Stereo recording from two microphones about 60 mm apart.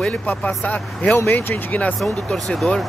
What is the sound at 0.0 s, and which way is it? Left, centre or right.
Speech, left.